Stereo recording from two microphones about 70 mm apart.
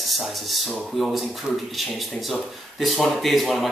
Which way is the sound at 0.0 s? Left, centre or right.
Centre.